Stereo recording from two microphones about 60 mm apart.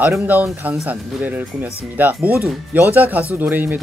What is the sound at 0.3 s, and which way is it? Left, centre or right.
Speech, right.